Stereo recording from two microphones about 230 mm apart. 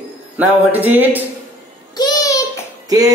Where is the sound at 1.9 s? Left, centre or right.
Centre.